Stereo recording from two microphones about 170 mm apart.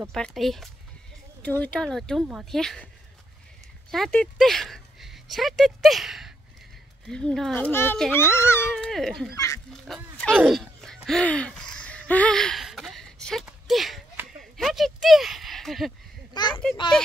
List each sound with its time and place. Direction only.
0.1 s speech: centre (ahead or behind)
3.9 s a child's voice: 5° left (ahead or behind)
9.3 s speech: 20° left (ahead or behind)
10.3 s a sound: 5° right (ahead or behind)
16.3 s speech: 25° left (ahead or behind)